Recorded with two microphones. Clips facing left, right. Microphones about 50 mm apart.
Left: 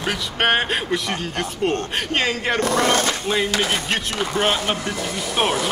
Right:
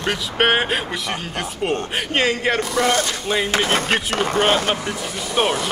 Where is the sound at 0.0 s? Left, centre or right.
Centre.